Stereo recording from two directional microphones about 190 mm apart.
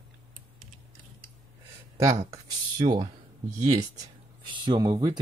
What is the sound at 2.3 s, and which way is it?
Speech, 20° right (ahead or behind).